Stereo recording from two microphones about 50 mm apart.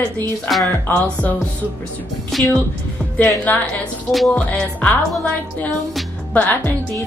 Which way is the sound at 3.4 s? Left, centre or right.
Left.